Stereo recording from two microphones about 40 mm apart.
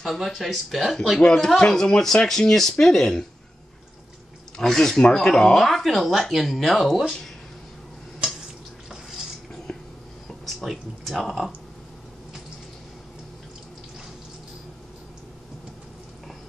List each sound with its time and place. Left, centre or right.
0.0 s speech: centre
1.2 s speech: centre
4.6 s speech: centre
10.4 s speech: centre